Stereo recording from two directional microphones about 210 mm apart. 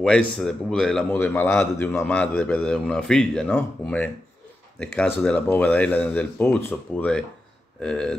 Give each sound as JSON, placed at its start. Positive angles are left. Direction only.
{"t": 0.0, "sound": "a man's voice", "side_deg": 5}